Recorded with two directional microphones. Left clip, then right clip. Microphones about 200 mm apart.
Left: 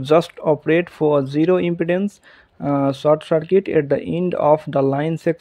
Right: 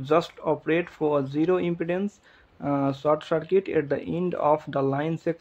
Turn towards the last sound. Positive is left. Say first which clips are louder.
# left 7 dB
turn(degrees=35)  # may be behind; listen again after turning